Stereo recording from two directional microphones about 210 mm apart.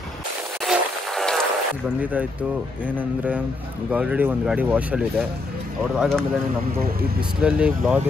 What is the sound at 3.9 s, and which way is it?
Speech, 5° right (ahead or behind).